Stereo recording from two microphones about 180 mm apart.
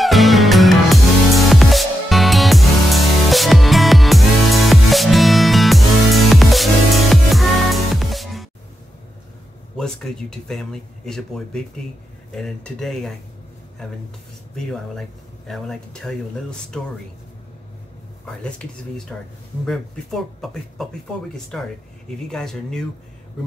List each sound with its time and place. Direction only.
0.0 s music: centre (ahead or behind)
9.8 s speech: 5° left (ahead or behind)
14.5 s speech: centre (ahead or behind)
18.2 s speech: 5° left (ahead or behind)